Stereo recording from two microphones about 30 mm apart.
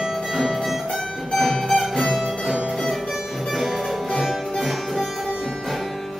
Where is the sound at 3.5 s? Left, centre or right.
Centre.